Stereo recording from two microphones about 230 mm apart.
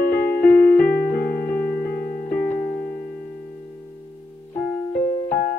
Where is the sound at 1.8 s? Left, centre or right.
Left.